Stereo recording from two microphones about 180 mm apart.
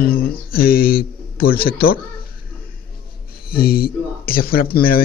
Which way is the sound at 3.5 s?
55° left (ahead or behind).